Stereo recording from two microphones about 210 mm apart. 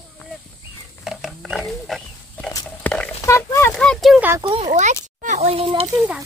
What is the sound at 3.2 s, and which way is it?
Oink, 15° left (ahead or behind).